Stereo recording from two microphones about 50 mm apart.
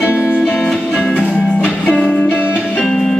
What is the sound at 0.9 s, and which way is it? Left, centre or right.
Music, left.